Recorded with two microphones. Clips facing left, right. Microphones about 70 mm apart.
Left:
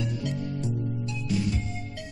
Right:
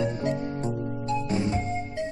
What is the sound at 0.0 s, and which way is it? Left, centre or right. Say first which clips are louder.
Music: right 5 dB; right.